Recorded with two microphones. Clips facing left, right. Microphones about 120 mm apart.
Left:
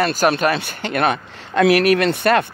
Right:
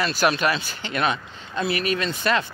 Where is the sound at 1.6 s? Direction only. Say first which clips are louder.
Left 10 dB; 75° left (ahead or behind); by 2.4 s 60° left (ahead or behind).